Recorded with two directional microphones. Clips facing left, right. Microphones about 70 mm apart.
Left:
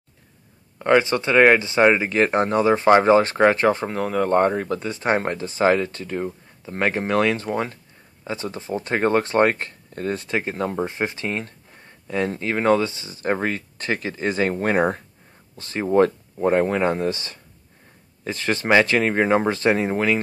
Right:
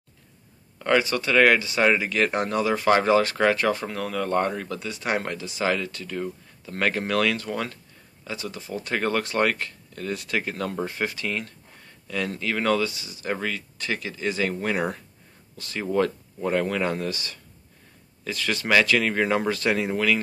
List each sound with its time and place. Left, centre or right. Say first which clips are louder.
0.7 s speech: left 4 dB; left